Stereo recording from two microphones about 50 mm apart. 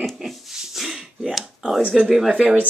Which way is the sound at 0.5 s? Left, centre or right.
Centre.